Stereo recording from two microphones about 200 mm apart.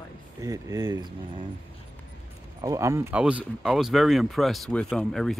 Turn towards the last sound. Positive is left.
turn(degrees=0)  # may be behind; listen again after turning